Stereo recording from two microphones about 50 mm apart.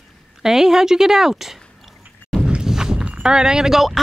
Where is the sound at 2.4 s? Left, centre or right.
Centre.